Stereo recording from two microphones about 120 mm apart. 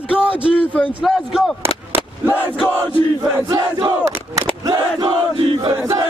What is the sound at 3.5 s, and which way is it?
Crowd, 35° right (ahead or behind).